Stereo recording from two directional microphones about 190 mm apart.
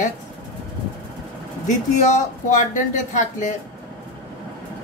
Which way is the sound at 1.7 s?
40° left (ahead or behind).